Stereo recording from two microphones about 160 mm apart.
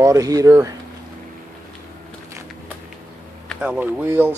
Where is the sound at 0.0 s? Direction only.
20° right (ahead or behind).